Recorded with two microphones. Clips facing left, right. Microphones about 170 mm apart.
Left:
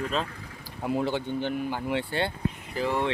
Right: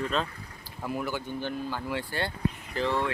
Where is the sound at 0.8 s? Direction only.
25° left (ahead or behind).